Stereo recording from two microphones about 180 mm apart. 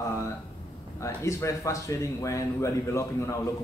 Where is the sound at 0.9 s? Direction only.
15° left (ahead or behind).